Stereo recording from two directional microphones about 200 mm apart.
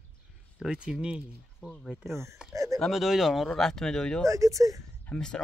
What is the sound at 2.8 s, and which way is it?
Speech, centre (ahead or behind).